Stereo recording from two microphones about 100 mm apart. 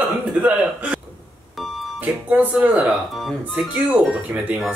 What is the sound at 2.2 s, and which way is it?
Speech, 15° right (ahead or behind).